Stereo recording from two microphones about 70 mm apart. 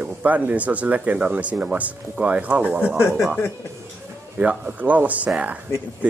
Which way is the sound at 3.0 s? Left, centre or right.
Left.